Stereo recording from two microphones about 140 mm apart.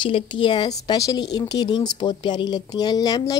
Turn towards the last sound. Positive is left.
turn(degrees=25)  # may be behind; listen again after turning